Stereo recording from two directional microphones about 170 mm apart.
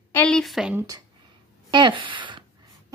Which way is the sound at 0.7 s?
20° right (ahead or behind).